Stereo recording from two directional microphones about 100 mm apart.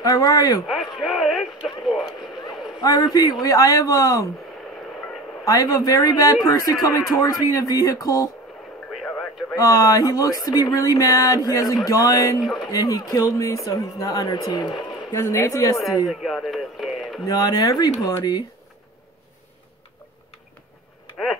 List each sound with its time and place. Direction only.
0.0 s speech: 40° left (ahead or behind)
0.7 s radio: centre (ahead or behind)
2.8 s speech: 40° left (ahead or behind)
5.4 s speech: 35° left (ahead or behind)
9.0 s radio: 5° left (ahead or behind)
9.6 s speech: 35° left (ahead or behind)
12.4 s speech: centre (ahead or behind)
12.7 s speech: 35° left (ahead or behind)
15.1 s speech: 30° left (ahead or behind)
16.1 s speech: centre (ahead or behind)
17.3 s speech: 40° left (ahead or behind)